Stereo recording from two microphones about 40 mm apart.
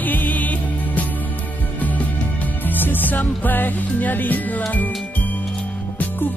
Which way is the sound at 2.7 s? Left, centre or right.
Left.